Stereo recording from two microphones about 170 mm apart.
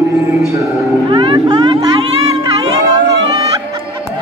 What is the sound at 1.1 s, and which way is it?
Vehicle, 30° right (ahead or behind).